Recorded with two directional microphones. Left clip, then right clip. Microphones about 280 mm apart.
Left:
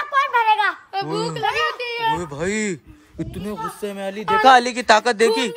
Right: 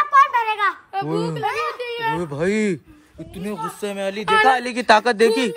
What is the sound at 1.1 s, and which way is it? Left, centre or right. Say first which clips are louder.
Speech: even; left.